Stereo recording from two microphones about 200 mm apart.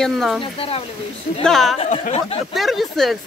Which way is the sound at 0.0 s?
Centre (ahead or behind).